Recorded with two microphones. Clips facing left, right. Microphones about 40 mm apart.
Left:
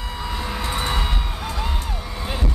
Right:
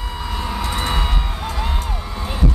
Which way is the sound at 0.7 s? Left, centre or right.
Centre.